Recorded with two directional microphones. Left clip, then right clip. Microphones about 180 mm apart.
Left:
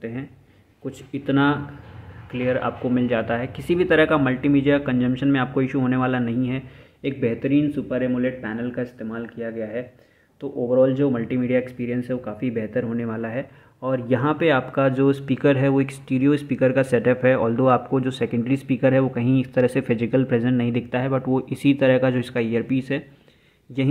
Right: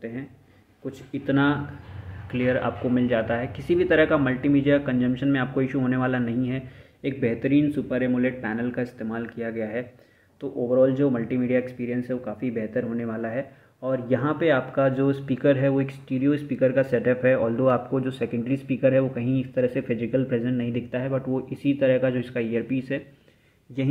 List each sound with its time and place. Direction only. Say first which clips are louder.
0.8 s speech: left 1 dB; 15° left (ahead or behind); by 9.8 s centre (ahead or behind)
10.4 s speech: left 2 dB; 15° left (ahead or behind)